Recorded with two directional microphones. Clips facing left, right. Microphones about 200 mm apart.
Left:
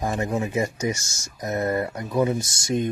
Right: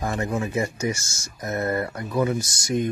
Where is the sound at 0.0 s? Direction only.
15° left (ahead or behind).